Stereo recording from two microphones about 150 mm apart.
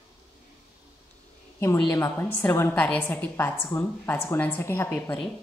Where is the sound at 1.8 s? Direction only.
20° left (ahead or behind).